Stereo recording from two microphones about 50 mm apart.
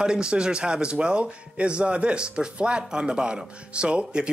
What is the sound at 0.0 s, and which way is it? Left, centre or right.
Speech, centre.